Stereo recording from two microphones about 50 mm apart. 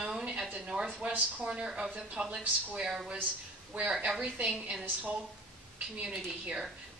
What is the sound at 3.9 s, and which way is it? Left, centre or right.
Speech, centre.